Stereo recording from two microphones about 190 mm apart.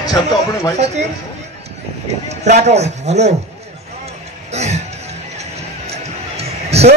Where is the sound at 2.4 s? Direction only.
35° right (ahead or behind).